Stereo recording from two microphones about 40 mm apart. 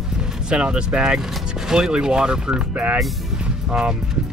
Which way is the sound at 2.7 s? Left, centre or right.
Right.